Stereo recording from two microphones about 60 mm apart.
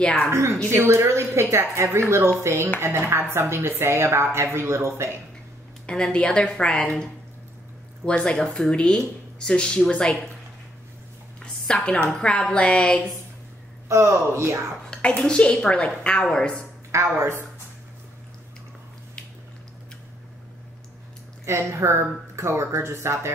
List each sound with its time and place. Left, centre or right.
0.0 s speech: centre
0.3 s a woman's voice: right
5.9 s speech: centre
8.0 s speech: centre
8.4 s a woman's voice: centre
8.6 s speech: centre
11.4 s a woman's voice: centre
13.8 s a woman's voice: right
14.9 s speech: centre
16.9 s a woman's voice: right
21.5 s a woman's voice: right